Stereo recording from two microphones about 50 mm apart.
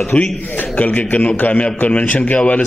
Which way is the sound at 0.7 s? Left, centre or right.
Left.